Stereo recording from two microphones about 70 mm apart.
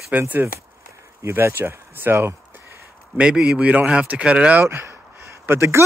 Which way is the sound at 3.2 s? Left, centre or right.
Centre.